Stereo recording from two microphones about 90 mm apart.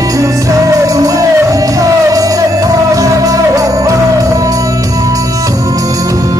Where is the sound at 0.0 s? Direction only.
40° right (ahead or behind).